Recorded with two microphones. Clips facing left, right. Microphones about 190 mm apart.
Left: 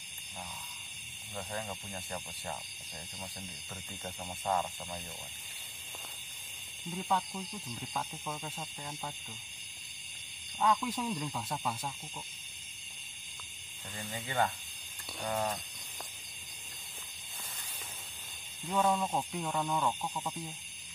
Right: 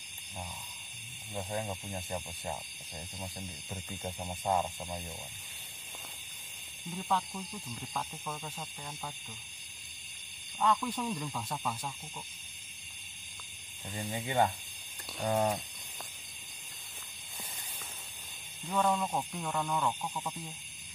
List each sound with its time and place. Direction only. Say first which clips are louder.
1.3 s speech: right 3 dB; 15° right (ahead or behind)
4.0 s speech: right 3 dB; 20° right (ahead or behind)
4.5 s speech: right 2 dB; 10° right (ahead or behind)
6.9 s speech: even; 5° left (ahead or behind)
10.8 s speech: even; 5° left (ahead or behind)
13.8 s speech: right 5 dB; 20° right (ahead or behind)
15.2 s speech: right 5 dB; 30° right (ahead or behind)
18.7 s speech: even; 10° left (ahead or behind)